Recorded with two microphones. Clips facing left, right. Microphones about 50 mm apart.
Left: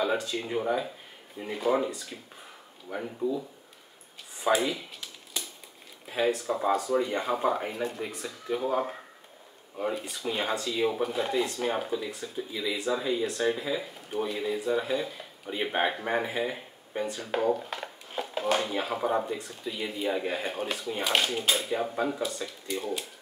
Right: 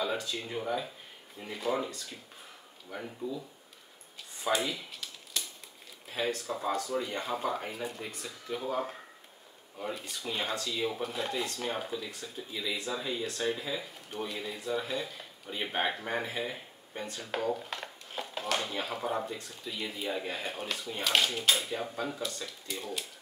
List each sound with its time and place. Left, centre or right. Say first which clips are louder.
0.2 s speech: left 5 dB; centre
4.4 s a sound: left 5 dB; centre
6.0 s speech: left 6 dB; centre